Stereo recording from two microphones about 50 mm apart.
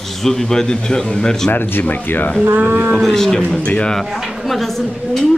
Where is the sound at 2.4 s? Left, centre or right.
Right.